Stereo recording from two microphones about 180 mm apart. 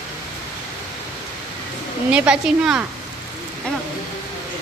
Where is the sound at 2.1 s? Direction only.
5° right (ahead or behind).